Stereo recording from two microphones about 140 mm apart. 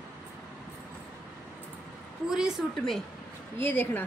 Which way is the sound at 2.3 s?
5° right (ahead or behind).